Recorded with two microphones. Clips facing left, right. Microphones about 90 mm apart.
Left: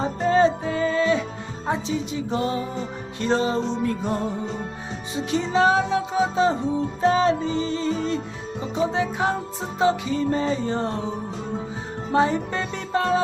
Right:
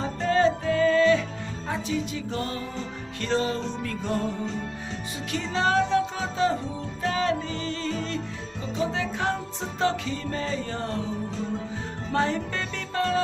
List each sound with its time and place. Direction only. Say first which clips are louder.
0.0 s music: left 4 dB; 20° left (ahead or behind)
12.1 s music: left 5 dB; 15° left (ahead or behind)